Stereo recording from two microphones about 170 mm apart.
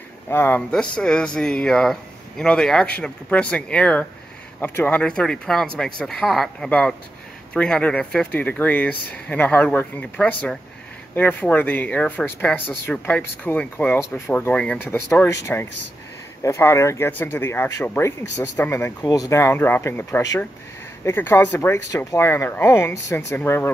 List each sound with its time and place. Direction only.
0.3 s speech: 10° left (ahead or behind)